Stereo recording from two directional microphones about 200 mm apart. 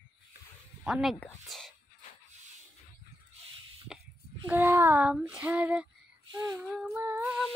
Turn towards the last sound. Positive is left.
turn(degrees=-10)  # may be behind; listen again after turning